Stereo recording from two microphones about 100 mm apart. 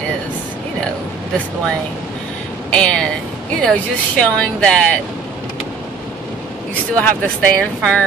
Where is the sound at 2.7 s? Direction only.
10° left (ahead or behind).